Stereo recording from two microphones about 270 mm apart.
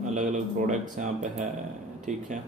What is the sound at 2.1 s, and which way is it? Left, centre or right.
Speech, right.